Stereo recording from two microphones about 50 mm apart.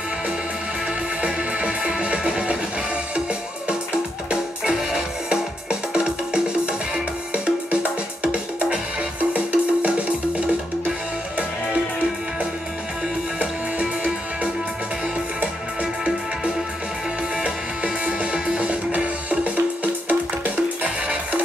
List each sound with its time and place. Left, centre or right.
1.2 s music: right
4.3 s music: centre
13.4 s music: right
17.4 s music: right